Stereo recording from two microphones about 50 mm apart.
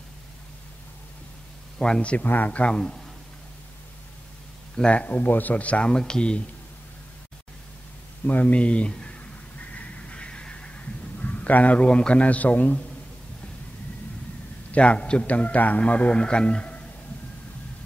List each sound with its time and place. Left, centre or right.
2.0 s a man's voice: left
2.2 s speech: left
2.6 s a man's voice: centre
4.7 s a man's voice: left
8.3 s speech: left
8.5 s a man's voice: left
9.6 s honk: left
11.2 s a man's voice: left
14.7 s a man's voice: left